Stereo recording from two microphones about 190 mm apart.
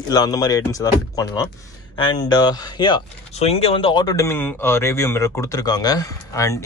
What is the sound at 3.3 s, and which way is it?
Speech, 35° left (ahead or behind).